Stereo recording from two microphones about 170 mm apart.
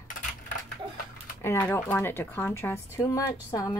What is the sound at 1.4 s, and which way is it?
Speech, 15° left (ahead or behind).